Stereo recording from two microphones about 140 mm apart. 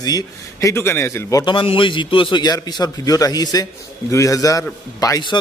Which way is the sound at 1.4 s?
40° left (ahead or behind).